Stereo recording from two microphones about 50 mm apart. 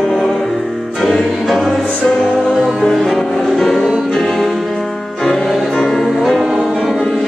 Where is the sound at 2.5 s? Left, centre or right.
Centre.